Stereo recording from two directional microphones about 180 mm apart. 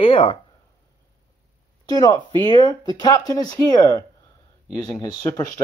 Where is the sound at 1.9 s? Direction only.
20° left (ahead or behind).